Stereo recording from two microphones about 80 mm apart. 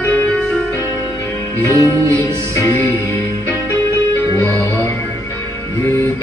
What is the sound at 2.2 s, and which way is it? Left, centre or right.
Music, left.